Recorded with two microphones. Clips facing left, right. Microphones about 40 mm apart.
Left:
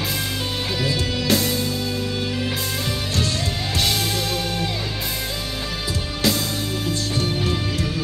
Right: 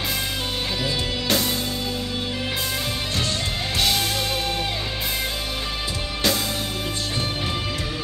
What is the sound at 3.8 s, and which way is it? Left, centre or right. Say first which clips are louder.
Music: even; centre.